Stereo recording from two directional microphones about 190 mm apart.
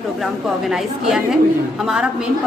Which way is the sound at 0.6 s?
Centre (ahead or behind).